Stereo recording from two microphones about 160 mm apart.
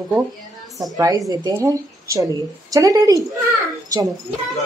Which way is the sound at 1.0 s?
20° right (ahead or behind).